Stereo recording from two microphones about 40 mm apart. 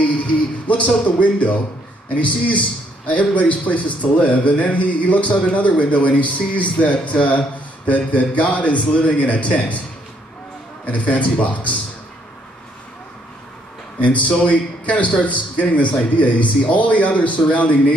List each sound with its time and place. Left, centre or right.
0.7 s a man's voice: left
10.9 s a man's voice: left
13.9 s a man's voice: left